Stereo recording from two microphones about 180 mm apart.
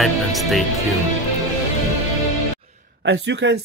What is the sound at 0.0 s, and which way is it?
Speech, centre (ahead or behind).